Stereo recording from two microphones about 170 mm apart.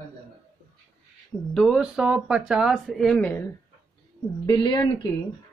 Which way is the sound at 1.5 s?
Centre (ahead or behind).